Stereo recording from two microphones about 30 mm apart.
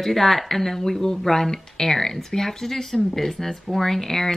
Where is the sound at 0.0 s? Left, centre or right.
Centre.